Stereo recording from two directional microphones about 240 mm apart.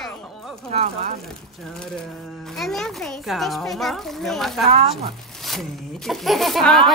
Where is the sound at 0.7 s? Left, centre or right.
Right.